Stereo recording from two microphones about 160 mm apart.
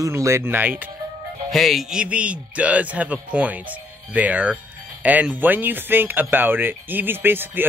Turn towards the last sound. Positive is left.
turn(degrees=-15)  # may be behind; listen again after turning